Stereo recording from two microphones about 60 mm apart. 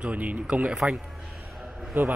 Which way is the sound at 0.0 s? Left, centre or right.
Right.